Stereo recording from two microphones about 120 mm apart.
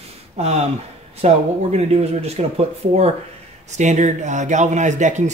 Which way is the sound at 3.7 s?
80° right.